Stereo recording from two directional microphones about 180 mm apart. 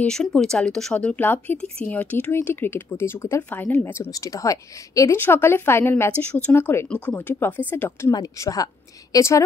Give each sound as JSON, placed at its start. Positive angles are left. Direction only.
{"t": 0.0, "sound": "speech", "side_deg": 5}